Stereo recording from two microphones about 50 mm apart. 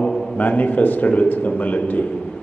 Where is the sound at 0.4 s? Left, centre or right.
Left.